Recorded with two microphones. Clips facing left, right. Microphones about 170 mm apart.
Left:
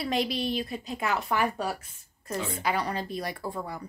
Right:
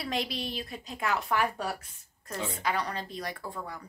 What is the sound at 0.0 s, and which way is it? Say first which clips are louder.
A woman's voice: left 5 dB; centre (ahead or behind).